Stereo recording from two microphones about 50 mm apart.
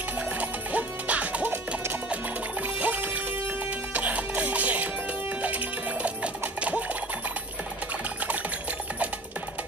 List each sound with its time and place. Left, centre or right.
0.2 s music: right
2.6 s music: right
6.6 s sewing machine: right